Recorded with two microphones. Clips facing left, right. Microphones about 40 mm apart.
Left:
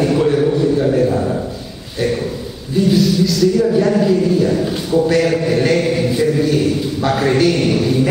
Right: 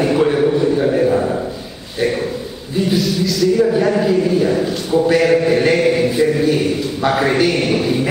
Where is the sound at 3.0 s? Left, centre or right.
Centre.